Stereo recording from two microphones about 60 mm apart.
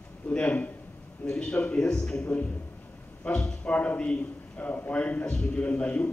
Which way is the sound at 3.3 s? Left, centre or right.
Centre.